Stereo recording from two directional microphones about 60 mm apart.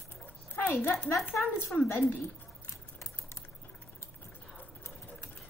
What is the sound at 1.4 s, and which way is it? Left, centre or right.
Speech, centre.